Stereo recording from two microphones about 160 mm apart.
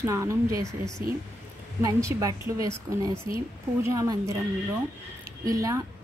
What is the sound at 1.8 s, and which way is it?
A woman's voice, 20° right (ahead or behind).